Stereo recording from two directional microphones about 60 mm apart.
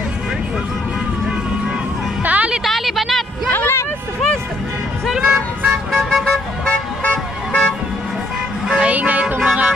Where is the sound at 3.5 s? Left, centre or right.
Left.